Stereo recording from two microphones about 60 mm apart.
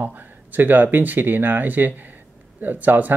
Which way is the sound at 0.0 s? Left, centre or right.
Right.